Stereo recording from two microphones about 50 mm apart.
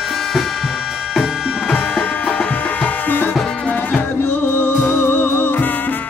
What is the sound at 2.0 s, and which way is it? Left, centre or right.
Music, left.